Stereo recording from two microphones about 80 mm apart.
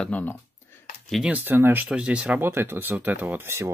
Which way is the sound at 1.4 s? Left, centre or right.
Right.